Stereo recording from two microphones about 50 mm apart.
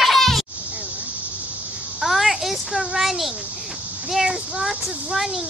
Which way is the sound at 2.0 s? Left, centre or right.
Centre.